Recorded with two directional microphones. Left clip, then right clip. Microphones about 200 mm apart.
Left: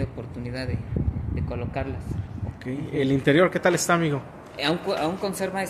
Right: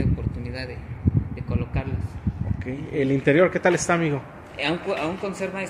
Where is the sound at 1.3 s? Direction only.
60° left (ahead or behind).